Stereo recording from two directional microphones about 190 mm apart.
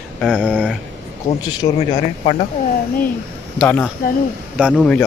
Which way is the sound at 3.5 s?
10° left (ahead or behind).